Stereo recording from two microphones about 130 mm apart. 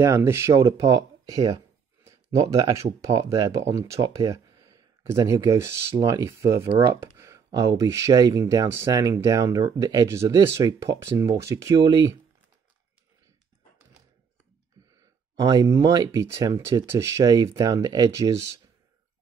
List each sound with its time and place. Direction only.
0.0 s speech: 20° right (ahead or behind)
15.3 s speech: 30° right (ahead or behind)